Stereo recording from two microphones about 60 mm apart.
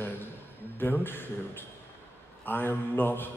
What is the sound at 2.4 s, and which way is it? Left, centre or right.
Speech, left.